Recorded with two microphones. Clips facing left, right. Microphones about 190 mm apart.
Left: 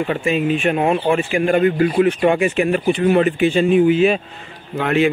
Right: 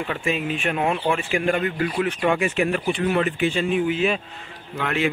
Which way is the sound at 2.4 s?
15° left (ahead or behind).